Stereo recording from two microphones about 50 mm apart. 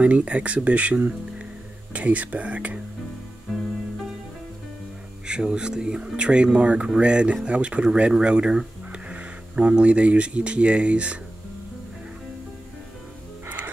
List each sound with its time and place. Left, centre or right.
0.0 s speech: right
5.2 s speech: centre